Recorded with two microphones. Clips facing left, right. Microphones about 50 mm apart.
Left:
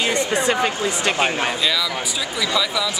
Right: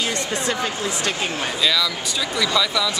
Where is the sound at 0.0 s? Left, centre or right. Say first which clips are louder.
Left 4 dB; centre.